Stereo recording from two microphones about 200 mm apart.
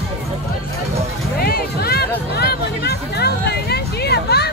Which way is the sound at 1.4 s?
50° left (ahead or behind).